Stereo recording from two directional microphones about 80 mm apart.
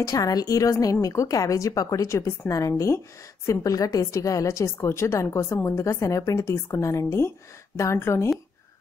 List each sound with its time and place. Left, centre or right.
0.0 s a woman's voice: left